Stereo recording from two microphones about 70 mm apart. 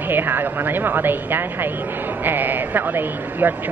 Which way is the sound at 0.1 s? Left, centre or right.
Right.